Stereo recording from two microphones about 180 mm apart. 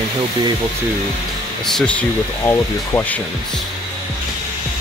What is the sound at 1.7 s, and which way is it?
Speech, 5° left (ahead or behind).